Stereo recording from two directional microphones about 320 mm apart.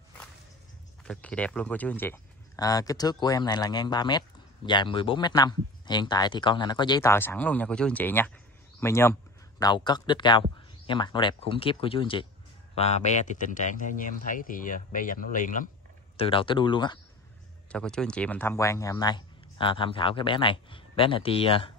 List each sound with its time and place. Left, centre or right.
1.0 s speech: centre
17.6 s speech: centre